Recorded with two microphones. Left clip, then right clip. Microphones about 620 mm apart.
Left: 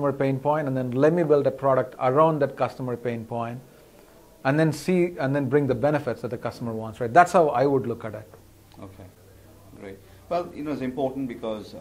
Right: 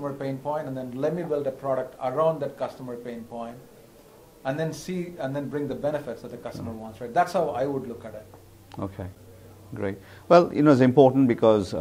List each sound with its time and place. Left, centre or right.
0.0 s speech: left
9.8 s speech: right